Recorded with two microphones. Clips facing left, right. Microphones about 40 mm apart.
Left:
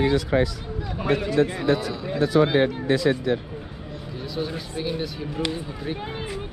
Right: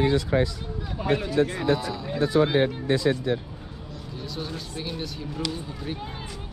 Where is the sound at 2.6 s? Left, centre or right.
Left.